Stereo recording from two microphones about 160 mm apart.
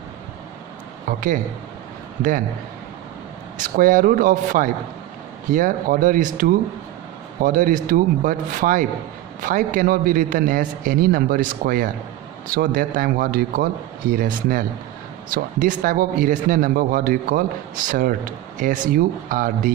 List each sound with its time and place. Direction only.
1.0 s a man's voice: 60° right (ahead or behind)
3.7 s a man's voice: 55° right (ahead or behind)